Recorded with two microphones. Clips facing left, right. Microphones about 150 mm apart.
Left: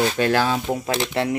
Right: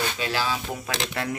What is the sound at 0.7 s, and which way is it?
Speech, 30° left (ahead or behind).